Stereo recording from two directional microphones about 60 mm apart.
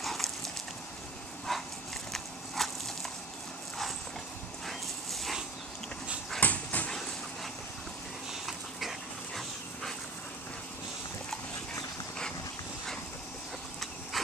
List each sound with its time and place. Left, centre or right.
0.0 s a sound: centre
1.5 s dog: centre
2.1 s a sound: centre
4.6 s dog: centre
6.4 s dog: left
8.3 s dog: centre
14.1 s insect: centre